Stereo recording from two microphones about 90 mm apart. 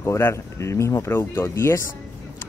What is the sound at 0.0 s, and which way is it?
Speech, 30° left (ahead or behind).